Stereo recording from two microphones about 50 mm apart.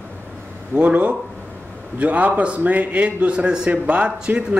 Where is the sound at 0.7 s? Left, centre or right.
Right.